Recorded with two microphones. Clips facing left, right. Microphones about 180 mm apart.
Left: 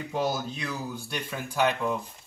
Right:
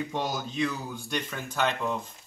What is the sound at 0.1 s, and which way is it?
Speech, 5° left (ahead or behind).